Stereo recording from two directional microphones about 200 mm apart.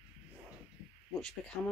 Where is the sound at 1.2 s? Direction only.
5° left (ahead or behind).